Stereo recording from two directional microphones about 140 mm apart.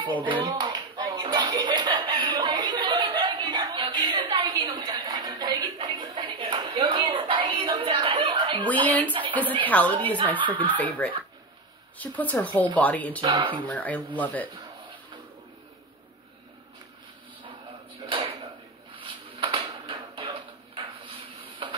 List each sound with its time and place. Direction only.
0.2 s clapping: 35° right (ahead or behind)
3.8 s a sound: 35° right (ahead or behind)
8.8 s a woman's voice: 10° left (ahead or behind)
13.2 s speech: 35° right (ahead or behind)
13.7 s a woman's voice: 10° left (ahead or behind)
18.0 s a sound: 35° right (ahead or behind)
21.6 s printer: 40° right (ahead or behind)